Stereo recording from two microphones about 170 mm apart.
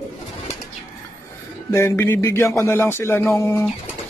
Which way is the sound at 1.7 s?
15° left (ahead or behind).